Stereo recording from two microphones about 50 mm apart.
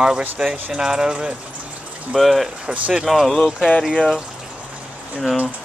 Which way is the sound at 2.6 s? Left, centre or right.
Centre.